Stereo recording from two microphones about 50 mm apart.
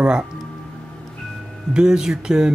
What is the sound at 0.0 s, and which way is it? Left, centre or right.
Speech, centre.